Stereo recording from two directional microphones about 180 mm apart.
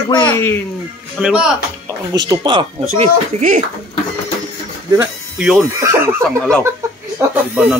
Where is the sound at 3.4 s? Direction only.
45° right (ahead or behind).